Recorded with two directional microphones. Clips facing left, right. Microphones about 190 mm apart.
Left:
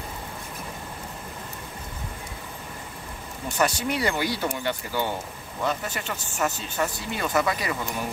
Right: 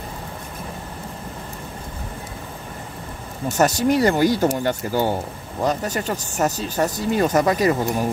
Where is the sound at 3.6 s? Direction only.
40° right (ahead or behind).